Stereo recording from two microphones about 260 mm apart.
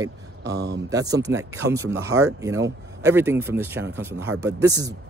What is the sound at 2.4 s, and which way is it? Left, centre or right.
A man's voice, centre.